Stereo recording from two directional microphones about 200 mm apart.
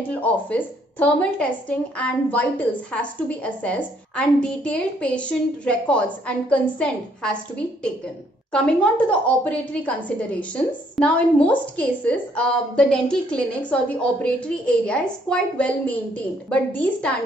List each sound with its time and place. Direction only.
0.1 s a woman's voice: 5° left (ahead or behind)